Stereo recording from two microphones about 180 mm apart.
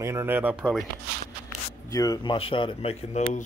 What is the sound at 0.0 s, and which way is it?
Speech, 15° right (ahead or behind).